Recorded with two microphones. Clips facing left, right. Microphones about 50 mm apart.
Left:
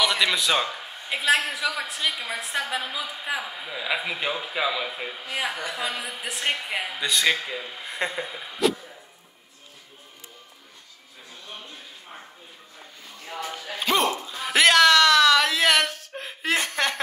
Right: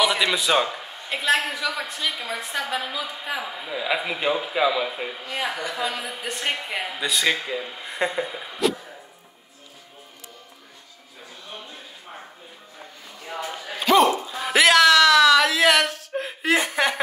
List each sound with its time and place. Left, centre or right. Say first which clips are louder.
0.0 s a man's voice: right 2 dB; centre
5.2 s speech: even; centre
5.7 s a woman's voice: right 2 dB; centre
13.2 s a sound: right 2 dB; centre